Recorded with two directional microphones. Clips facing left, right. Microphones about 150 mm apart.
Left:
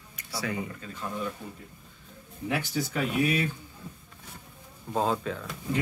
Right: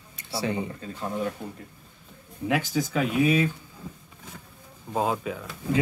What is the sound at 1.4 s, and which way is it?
Speech, 65° right (ahead or behind).